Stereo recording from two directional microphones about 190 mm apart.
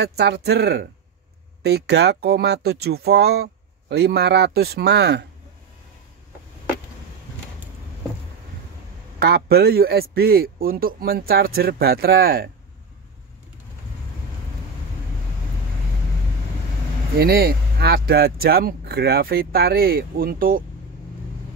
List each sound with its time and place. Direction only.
0.0 s speech: 60° right (ahead or behind)
9.2 s speech: 55° right (ahead or behind)
17.2 s speech: 55° right (ahead or behind)